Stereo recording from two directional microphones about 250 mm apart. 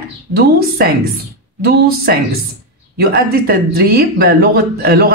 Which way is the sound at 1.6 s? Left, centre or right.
Right.